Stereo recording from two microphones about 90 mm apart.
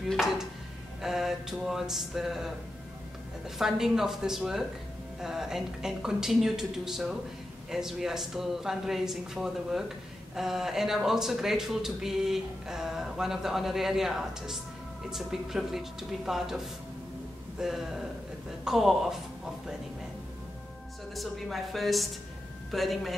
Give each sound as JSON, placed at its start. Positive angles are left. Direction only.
{"t": 0.1, "sound": "speech", "side_deg": -5}
{"t": 21.1, "sound": "speech", "side_deg": 0}